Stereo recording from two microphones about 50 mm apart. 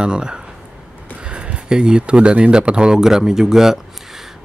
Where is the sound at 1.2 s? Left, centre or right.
Right.